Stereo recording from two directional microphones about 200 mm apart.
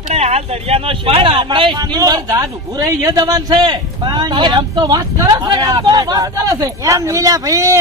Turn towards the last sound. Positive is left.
turn(degrees=-15)  # may be behind; listen again after turning